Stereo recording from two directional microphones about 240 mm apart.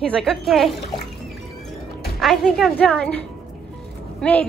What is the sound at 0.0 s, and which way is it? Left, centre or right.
Speech, centre.